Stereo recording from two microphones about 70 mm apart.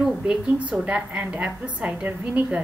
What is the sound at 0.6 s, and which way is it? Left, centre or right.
A woman's voice, centre.